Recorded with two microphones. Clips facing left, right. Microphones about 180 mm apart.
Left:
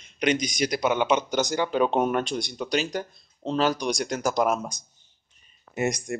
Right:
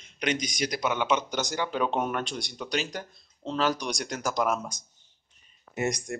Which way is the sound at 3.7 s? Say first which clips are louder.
Left 6 dB; 10° left (ahead or behind).